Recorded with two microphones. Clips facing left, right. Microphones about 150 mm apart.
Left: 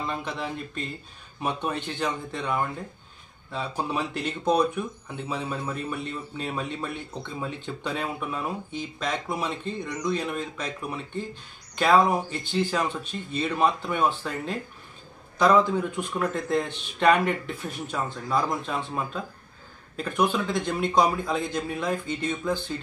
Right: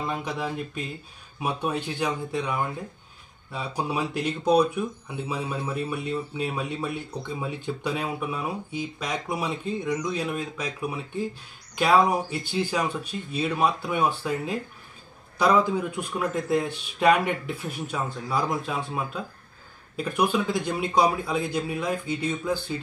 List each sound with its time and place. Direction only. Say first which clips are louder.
0.1 s speech: right 2 dB; 10° right (ahead or behind)
3.5 s speech: even; 10° right (ahead or behind)
20.0 s speech: right 1 dB; 10° right (ahead or behind)